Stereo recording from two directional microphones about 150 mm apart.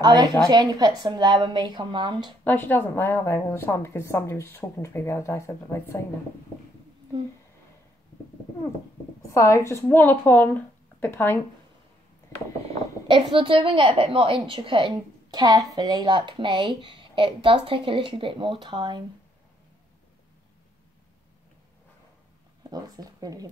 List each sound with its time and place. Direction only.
0.0 s a woman's voice: 25° right (ahead or behind)
2.4 s a woman's voice: 10° left (ahead or behind)
9.3 s a woman's voice: 20° left (ahead or behind)
13.1 s a woman's voice: 35° right (ahead or behind)
22.6 s speech: 25° right (ahead or behind)